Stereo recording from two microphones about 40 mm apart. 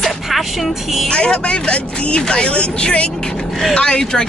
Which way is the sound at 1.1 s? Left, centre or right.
Left.